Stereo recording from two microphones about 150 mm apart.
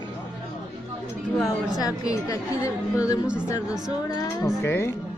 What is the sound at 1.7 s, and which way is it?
A woman's voice, 25° left (ahead or behind).